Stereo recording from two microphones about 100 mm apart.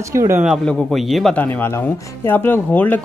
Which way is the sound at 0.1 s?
30° right (ahead or behind).